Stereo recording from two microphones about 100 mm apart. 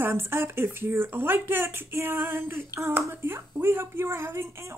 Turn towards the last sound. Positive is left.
turn(degrees=-25)  # may be behind; listen again after turning